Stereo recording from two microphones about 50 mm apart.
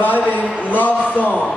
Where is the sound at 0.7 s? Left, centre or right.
Left.